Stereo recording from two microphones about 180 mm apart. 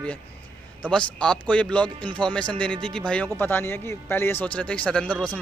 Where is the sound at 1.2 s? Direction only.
5° left (ahead or behind).